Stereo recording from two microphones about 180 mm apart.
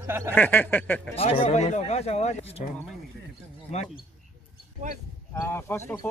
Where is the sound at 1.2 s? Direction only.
35° left (ahead or behind).